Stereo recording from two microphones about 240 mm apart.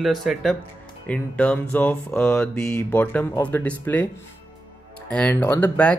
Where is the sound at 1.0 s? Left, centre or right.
Centre.